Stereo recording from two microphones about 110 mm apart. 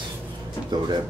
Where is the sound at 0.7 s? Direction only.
40° right (ahead or behind).